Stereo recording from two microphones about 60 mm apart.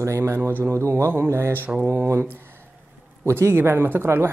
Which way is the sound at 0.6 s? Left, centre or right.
Right.